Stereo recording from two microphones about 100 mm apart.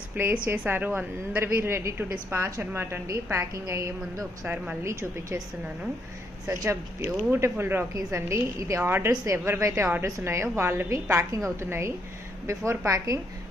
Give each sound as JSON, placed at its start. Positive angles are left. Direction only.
{"t": 0.1, "sound": "speech", "side_deg": -20}
{"t": 6.4, "sound": "speech", "side_deg": -30}